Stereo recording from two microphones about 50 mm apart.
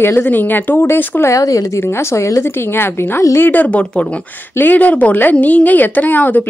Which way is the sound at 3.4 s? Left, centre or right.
Left.